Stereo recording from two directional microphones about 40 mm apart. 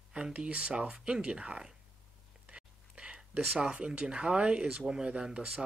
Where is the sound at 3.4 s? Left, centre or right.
Centre.